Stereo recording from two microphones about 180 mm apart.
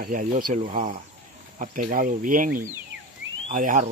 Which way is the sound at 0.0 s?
45° right (ahead or behind).